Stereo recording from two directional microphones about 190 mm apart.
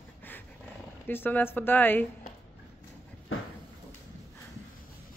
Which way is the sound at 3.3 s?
90° left.